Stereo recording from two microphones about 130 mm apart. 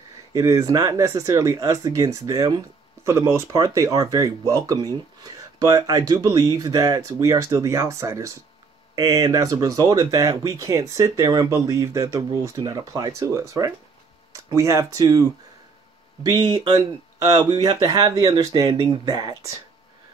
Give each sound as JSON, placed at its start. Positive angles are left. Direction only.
{"t": 0.3, "sound": "speech", "side_deg": -25}